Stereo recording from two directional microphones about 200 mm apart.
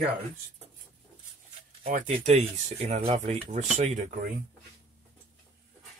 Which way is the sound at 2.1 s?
35° right (ahead or behind).